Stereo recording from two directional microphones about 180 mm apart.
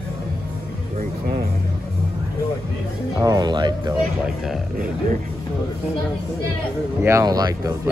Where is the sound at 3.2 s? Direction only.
20° right (ahead or behind).